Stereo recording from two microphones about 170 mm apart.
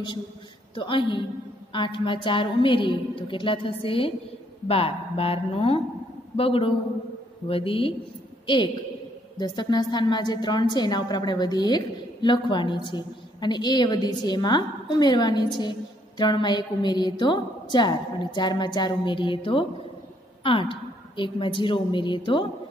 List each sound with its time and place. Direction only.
0.7 s a woman's voice: 30° left (ahead or behind)
9.4 s a woman's voice: 25° left (ahead or behind)